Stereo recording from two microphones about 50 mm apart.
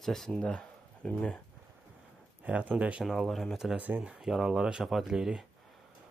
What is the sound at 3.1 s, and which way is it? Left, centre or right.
Speech, centre.